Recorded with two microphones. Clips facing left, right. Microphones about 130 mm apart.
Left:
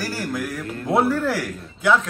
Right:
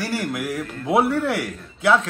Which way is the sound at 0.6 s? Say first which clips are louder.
Right 1 dB; centre (ahead or behind).